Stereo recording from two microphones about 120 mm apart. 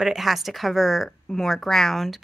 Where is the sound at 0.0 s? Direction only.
Centre (ahead or behind).